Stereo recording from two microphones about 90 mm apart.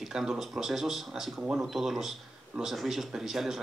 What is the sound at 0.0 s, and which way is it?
Speech, 5° right (ahead or behind).